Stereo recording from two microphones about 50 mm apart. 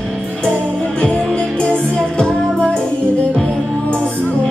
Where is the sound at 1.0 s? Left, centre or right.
Left.